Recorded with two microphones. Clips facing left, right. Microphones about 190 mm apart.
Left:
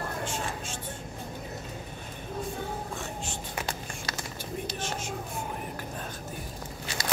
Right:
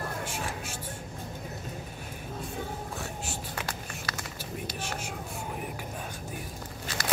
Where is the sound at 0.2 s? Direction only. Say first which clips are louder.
Left 2 dB; 10° right (ahead or behind).